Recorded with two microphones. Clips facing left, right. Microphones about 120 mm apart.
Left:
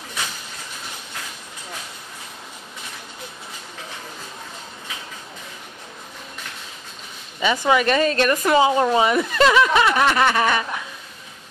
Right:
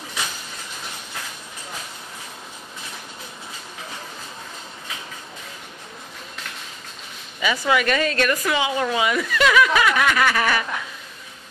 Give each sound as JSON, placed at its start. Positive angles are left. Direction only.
{"t": 7.3, "sound": "speech", "side_deg": 25}